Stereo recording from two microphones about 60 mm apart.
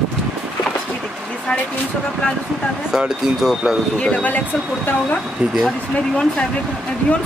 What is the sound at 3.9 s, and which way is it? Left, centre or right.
Speech, left.